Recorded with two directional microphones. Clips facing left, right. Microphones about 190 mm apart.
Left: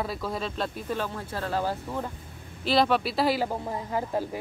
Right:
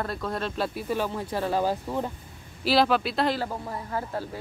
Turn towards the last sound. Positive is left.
turn(degrees=15)  # may be behind; listen again after turning